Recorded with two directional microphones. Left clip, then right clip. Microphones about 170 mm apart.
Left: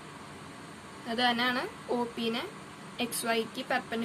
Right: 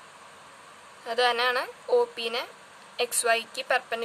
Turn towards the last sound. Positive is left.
turn(degrees=-50)  # may be behind; listen again after turning